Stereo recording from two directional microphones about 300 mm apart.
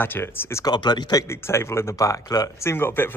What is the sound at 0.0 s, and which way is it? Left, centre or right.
Speech, centre.